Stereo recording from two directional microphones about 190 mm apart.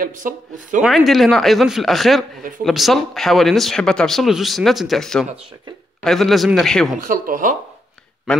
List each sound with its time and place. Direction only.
0.0 s speech: 45° right (ahead or behind)
0.8 s speech: centre (ahead or behind)
7.1 s speech: 45° right (ahead or behind)